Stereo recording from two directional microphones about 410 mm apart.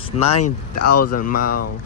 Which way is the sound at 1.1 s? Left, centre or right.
Centre.